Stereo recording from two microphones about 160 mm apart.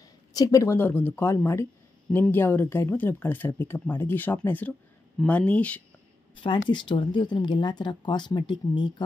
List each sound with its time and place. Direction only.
0.3 s speech: 20° left (ahead or behind)
6.4 s speech: 30° left (ahead or behind)